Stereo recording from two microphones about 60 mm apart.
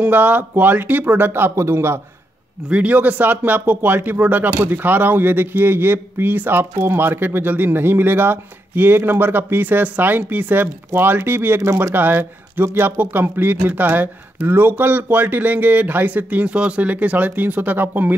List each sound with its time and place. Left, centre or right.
0.0 s speech: right
1.5 s a man's voice: right
2.7 s speech: right